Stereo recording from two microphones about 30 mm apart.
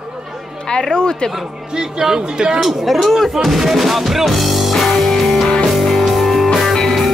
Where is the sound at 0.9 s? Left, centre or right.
Left.